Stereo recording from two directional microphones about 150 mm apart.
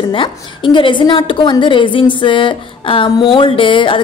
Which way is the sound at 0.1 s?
35° left (ahead or behind).